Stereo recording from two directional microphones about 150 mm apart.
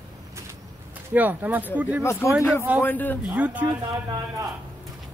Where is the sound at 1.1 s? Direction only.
10° right (ahead or behind).